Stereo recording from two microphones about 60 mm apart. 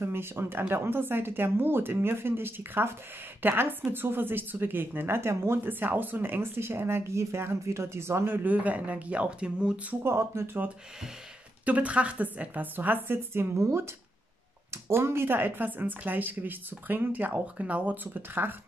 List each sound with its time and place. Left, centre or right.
0.0 s speech: right
5.7 s speech: right
8.5 s a woman's voice: right
10.0 s speech: right
11.6 s a woman's voice: right
13.6 s speech: right
14.7 s speech: right